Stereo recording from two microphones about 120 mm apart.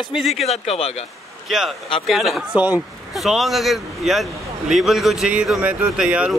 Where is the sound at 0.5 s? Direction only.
60° left (ahead or behind).